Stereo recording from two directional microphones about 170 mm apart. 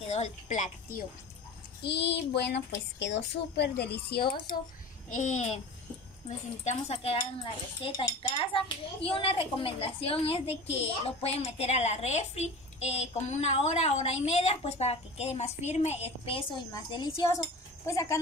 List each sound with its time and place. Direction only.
0.0 s a woman's voice: 40° left (ahead or behind)
1.8 s a woman's voice: 75° left (ahead or behind)
5.1 s a child's voice: 45° left (ahead or behind)
6.6 s speech: 40° left (ahead or behind); by 18.2 s 15° left (ahead or behind)